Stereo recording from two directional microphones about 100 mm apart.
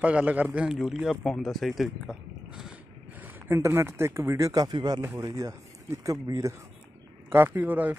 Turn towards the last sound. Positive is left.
turn(degrees=-15)  # may be behind; listen again after turning